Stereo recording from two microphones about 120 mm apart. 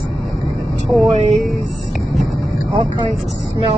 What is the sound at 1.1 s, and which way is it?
Speech, 65° right (ahead or behind).